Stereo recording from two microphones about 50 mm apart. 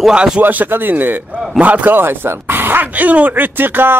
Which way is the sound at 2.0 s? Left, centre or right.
Right.